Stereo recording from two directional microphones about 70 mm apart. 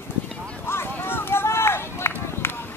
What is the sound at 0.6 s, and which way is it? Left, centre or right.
Run, left.